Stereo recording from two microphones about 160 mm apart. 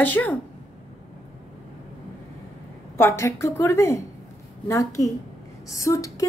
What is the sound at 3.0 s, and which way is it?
A woman's voice, 15° left (ahead or behind).